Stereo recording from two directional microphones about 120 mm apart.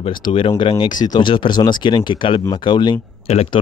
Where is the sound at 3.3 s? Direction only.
55° left (ahead or behind).